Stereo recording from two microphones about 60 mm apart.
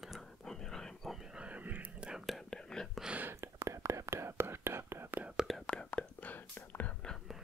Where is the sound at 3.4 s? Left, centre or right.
Right.